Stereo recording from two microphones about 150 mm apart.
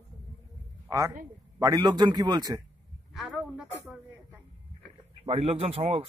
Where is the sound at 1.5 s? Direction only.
25° right (ahead or behind).